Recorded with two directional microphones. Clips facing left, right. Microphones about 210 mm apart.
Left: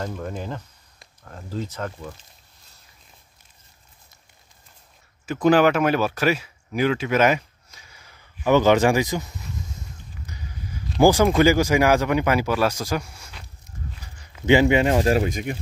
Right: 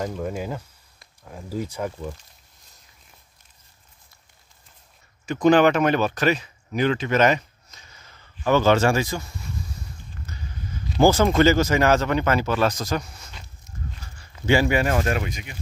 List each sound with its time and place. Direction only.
0.0 s speech: 10° right (ahead or behind)
5.2 s speech: 5° left (ahead or behind)
10.1 s a sound: 10° left (ahead or behind)
11.0 s speech: 15° left (ahead or behind)
15.0 s speech: 40° left (ahead or behind)